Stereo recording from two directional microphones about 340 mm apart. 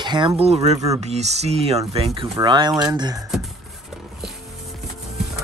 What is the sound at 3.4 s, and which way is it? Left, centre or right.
Music, centre.